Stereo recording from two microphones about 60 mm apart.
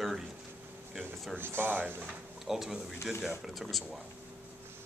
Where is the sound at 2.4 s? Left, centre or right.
Centre.